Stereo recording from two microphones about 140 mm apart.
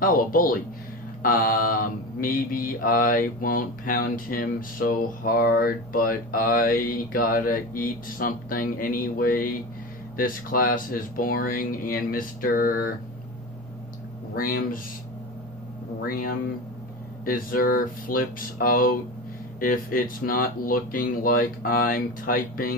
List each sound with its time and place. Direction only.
0.0 s mantra: 85° left
14.3 s mantra: 90° left
16.1 s mantra: 90° left